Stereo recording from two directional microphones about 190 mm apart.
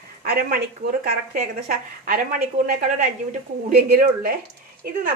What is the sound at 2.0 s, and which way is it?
A woman's voice, 50° right (ahead or behind).